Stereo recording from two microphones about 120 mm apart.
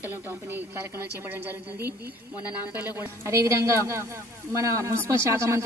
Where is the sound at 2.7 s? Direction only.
20° right (ahead or behind).